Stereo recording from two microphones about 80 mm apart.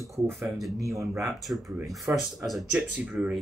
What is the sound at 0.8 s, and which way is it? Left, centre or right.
Speech, right.